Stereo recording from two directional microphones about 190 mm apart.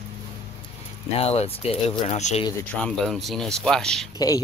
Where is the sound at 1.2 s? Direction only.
30° left (ahead or behind).